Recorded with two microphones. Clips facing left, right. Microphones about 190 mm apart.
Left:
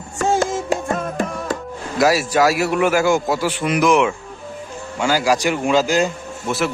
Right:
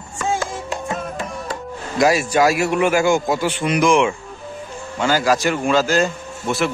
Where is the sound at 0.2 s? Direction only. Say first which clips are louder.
Left 5 dB; 45° left (ahead or behind).